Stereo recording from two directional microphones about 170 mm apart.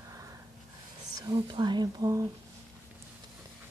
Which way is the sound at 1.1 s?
20° right (ahead or behind).